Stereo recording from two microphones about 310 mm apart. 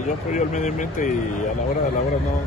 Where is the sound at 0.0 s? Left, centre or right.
Left.